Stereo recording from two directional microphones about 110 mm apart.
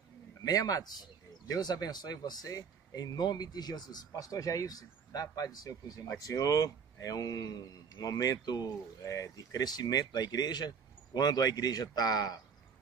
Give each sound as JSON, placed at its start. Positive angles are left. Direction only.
{"t": 0.4, "sound": "speech", "side_deg": 35}